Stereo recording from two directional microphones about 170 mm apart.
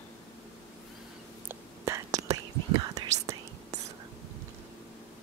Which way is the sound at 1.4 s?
15° right (ahead or behind).